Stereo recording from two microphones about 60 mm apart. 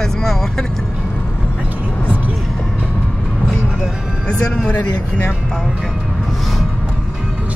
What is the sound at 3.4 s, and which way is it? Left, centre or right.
Music, centre.